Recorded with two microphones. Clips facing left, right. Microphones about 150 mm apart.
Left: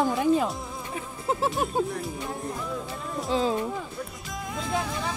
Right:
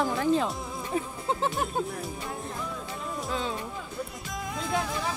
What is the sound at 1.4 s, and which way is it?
Speech, 10° left (ahead or behind).